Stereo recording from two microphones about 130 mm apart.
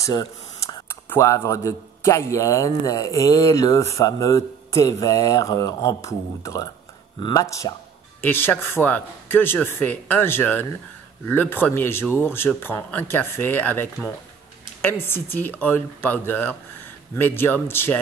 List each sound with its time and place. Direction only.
0.0 s speech: 25° left (ahead or behind)
7.2 s speech: 35° left (ahead or behind)
7.4 s speech: 25° left (ahead or behind)